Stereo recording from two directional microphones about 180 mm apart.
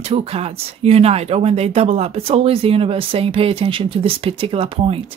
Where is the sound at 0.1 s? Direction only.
35° right (ahead or behind).